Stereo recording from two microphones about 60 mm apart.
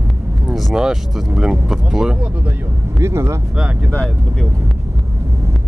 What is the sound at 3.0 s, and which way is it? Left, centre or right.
Vehicle, right.